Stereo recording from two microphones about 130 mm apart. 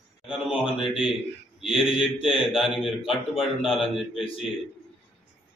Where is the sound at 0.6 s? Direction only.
40° left (ahead or behind).